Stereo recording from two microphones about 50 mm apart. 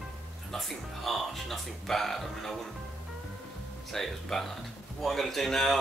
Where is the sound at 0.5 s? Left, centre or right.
Centre.